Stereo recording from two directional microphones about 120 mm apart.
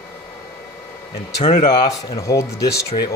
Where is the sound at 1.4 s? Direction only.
90° left.